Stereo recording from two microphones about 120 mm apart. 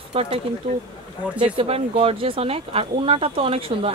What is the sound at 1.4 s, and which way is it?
Speech, 50° right (ahead or behind).